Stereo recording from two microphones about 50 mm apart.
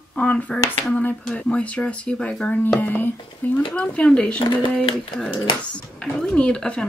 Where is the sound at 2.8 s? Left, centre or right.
Left.